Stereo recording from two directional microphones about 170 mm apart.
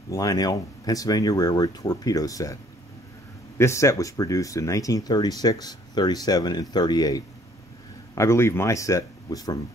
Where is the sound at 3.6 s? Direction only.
15° left (ahead or behind).